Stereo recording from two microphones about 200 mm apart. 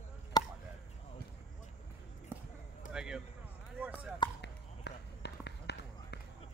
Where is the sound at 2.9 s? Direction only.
5° right (ahead or behind).